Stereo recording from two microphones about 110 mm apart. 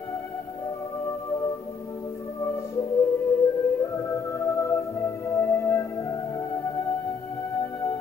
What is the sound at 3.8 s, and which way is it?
Music, 25° left (ahead or behind).